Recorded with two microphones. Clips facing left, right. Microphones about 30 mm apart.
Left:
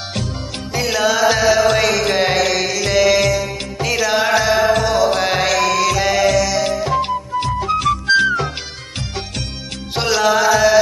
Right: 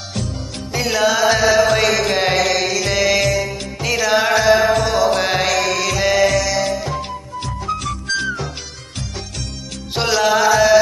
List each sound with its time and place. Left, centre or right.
0.7 s music: centre
6.7 s music: centre
7.1 s music: left
9.9 s music: centre